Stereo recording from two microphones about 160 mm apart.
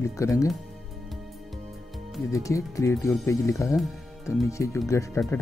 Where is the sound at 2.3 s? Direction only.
20° left (ahead or behind).